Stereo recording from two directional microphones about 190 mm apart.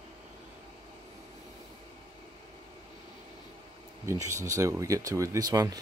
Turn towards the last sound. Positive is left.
turn(degrees=-20)  # may be behind; listen again after turning